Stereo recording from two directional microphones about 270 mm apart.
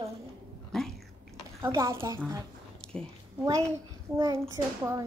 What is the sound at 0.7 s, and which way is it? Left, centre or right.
Chewing, centre.